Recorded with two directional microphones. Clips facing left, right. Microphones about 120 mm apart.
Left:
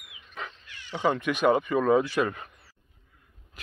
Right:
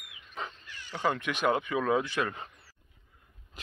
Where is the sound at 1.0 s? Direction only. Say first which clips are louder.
Left 5 dB; 5° left (ahead or behind).